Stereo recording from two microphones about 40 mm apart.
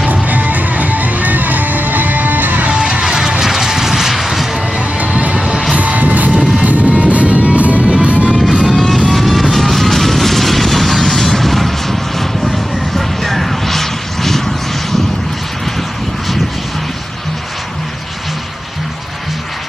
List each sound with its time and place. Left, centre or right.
0.1 s music: right
2.6 s music: right
3.0 s vehicle: centre
4.7 s music: right
6.3 s music: right
8.6 s music: centre
9.1 s vehicle: centre